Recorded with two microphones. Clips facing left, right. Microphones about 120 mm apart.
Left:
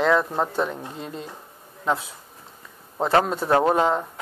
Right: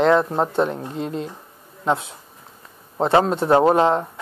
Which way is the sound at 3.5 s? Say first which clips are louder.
Right 4 dB; 30° right (ahead or behind).